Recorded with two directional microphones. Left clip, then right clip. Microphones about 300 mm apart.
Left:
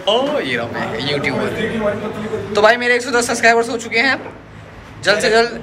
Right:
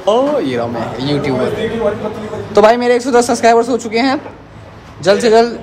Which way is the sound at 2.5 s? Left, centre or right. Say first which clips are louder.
Right 4 dB; centre.